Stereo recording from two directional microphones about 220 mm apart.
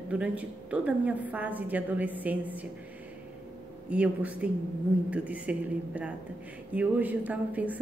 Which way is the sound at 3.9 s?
5° right (ahead or behind).